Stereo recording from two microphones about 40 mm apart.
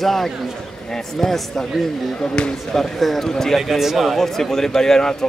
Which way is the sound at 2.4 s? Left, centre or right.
Left.